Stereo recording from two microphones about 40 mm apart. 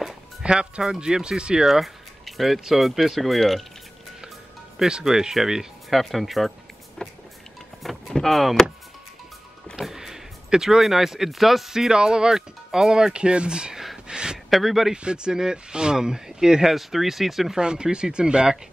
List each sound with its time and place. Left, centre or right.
0.4 s speech: right
1.6 s speech: centre
5.0 s speech: centre
5.9 s speech: centre
7.0 s music: left
7.8 s power windows: centre
9.8 s speech: centre
11.9 s speech: centre
14.0 s a sound: centre
14.5 s speech: centre
15.0 s speech: right; by 17.6 s centre
17.6 s speech: right